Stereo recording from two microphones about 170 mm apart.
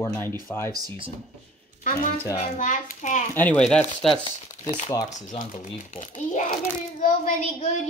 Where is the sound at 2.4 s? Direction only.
45° left (ahead or behind).